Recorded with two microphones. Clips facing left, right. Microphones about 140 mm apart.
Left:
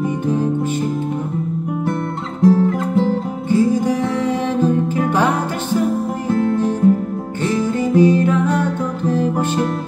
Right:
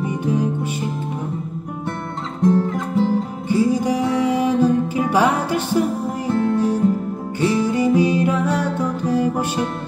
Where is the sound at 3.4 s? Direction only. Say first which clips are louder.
Left 3 dB; 10° right (ahead or behind).